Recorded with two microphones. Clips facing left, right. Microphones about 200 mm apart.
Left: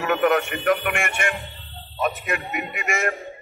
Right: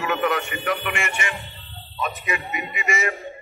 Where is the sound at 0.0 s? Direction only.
55° left (ahead or behind).